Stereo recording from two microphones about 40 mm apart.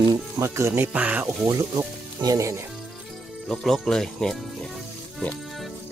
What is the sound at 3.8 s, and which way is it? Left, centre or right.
Speech, centre.